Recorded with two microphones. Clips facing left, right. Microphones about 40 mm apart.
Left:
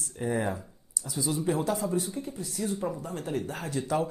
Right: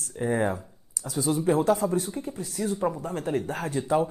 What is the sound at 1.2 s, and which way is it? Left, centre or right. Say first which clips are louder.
Speech: right 5 dB; right.